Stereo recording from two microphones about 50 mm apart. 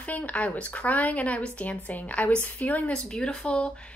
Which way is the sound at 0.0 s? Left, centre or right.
Left.